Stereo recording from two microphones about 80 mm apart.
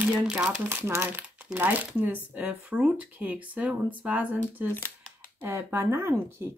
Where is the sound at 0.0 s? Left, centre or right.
Right.